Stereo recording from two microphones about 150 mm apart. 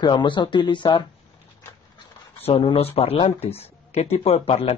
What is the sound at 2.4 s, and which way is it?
Speech, 40° left (ahead or behind).